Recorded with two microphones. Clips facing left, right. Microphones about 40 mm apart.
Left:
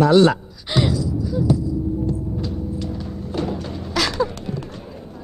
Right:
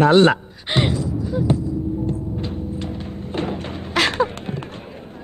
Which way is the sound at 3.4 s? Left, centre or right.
Right.